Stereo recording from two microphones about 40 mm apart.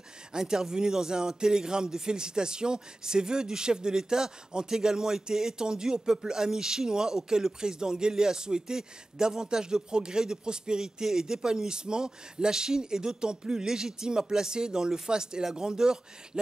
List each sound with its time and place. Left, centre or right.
0.3 s speech: centre